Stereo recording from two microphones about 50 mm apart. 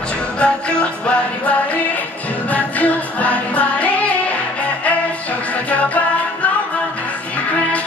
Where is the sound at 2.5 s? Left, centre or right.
Left.